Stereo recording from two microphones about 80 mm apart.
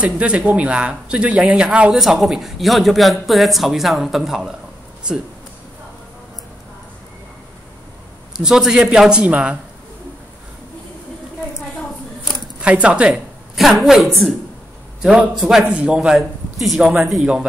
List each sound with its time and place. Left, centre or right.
0.0 s speech: centre
8.4 s speech: centre
12.6 s speech: centre
13.1 s a man's voice: centre